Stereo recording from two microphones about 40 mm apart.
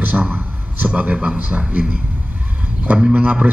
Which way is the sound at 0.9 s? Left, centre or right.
Right.